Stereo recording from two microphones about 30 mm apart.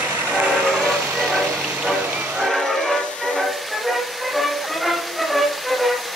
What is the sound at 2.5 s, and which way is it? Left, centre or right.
Train, centre.